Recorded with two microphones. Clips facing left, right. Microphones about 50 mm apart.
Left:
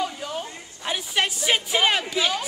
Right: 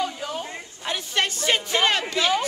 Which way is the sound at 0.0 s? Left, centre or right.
Centre.